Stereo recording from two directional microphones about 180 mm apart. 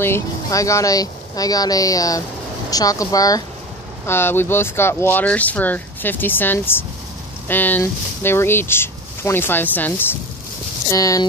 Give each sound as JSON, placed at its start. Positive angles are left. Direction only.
{"t": 0.0, "sound": "speech", "side_deg": 15}